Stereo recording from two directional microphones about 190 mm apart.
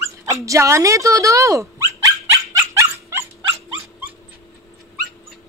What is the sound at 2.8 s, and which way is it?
Dog, 15° right (ahead or behind).